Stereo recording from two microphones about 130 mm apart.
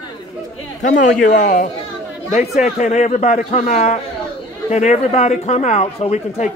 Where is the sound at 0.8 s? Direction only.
75° left (ahead or behind).